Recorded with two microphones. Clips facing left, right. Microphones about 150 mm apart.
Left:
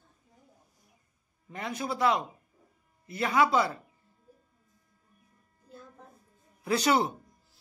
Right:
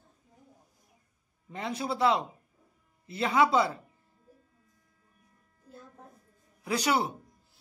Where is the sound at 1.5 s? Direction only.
25° right (ahead or behind).